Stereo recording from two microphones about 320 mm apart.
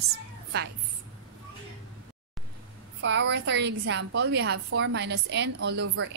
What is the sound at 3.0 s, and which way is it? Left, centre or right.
A woman's voice, right.